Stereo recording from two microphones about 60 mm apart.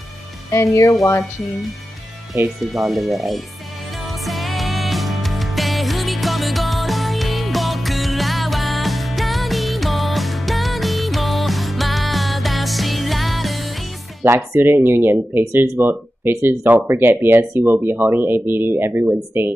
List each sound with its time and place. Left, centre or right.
0.5 s speech: left
2.6 s speech: centre
3.9 s music: centre
14.2 s speech: right
14.6 s speech: right